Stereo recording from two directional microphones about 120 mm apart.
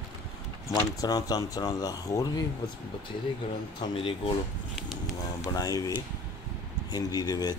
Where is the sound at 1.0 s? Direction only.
30° left (ahead or behind).